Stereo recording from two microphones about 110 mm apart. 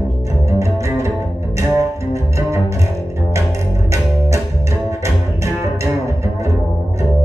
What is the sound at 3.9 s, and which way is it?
Music, 25° right (ahead or behind).